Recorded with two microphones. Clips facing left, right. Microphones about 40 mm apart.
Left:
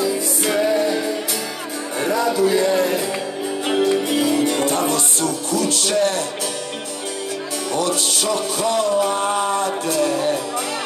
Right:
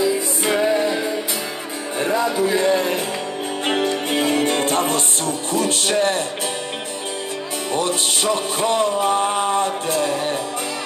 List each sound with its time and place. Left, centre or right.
0.0 s music: centre
2.0 s speech: right
3.6 s music: right
7.7 s music: right